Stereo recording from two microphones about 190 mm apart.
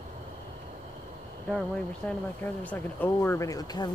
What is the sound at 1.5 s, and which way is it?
Speech, 5° left (ahead or behind).